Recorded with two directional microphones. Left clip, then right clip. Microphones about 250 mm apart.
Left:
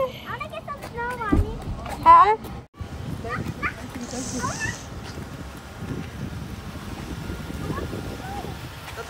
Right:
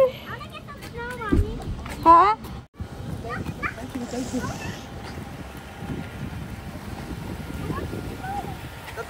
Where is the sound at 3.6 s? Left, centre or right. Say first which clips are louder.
Left 1 dB; centre.